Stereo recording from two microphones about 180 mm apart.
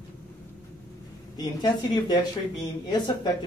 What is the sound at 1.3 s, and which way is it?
Speech, 25° left (ahead or behind).